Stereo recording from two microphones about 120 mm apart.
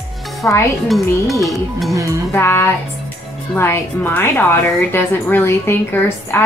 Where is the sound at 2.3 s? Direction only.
20° left (ahead or behind).